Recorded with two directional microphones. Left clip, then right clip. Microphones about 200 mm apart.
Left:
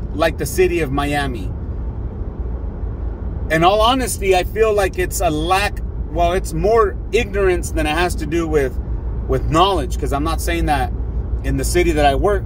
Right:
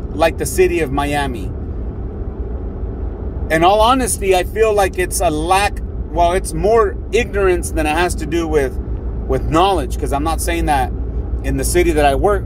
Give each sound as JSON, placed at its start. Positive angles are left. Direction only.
{"t": 0.1, "sound": "speech", "side_deg": 15}
{"t": 3.5, "sound": "speech", "side_deg": 20}